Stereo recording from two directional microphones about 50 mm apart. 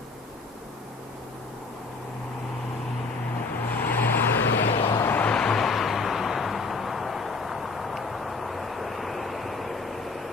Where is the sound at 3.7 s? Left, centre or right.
Left.